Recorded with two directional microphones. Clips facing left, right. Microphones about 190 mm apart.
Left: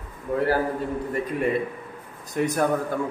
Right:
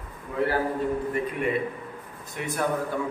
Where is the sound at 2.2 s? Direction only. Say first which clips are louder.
Left 9 dB; 40° left (ahead or behind).